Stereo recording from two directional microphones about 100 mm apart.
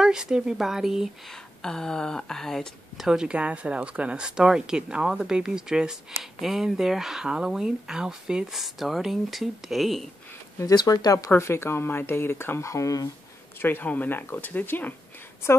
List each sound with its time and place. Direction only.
0.0 s speech: 5° right (ahead or behind)
1.6 s speech: 5° left (ahead or behind)
10.6 s speech: 40° left (ahead or behind)
11.3 s speech: 25° left (ahead or behind)
13.6 s speech: 20° left (ahead or behind)